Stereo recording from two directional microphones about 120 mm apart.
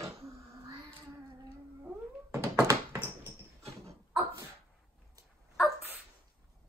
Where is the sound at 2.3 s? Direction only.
25° right (ahead or behind).